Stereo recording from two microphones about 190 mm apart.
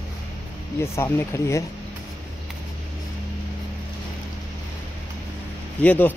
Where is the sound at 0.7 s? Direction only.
15° left (ahead or behind).